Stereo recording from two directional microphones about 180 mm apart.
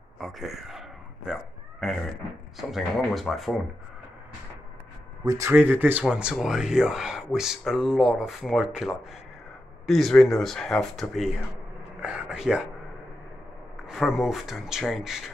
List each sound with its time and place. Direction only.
0.2 s a sound: centre (ahead or behind)
2.7 s speech: centre (ahead or behind)
5.2 s speech: 20° right (ahead or behind)
5.5 s speech: 10° right (ahead or behind)
13.8 s speech: centre (ahead or behind)